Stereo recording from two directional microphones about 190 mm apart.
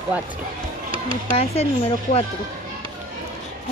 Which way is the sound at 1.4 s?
30° left (ahead or behind).